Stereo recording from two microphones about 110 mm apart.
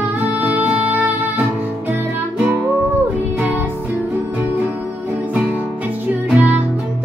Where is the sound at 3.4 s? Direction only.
20° right (ahead or behind).